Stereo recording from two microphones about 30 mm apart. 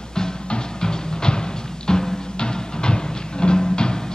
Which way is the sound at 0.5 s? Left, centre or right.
Left.